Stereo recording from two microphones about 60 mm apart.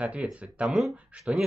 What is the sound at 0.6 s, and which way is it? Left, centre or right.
Speech, centre.